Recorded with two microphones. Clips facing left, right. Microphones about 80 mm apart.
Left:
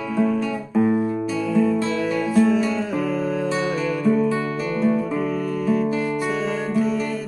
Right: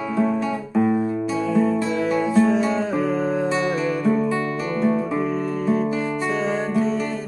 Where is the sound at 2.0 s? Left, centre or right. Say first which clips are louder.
Right 2 dB; right.